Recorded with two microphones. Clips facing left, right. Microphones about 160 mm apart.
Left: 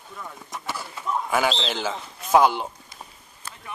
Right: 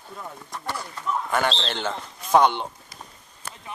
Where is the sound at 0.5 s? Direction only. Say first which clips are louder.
Right 1 dB; 5° left (ahead or behind).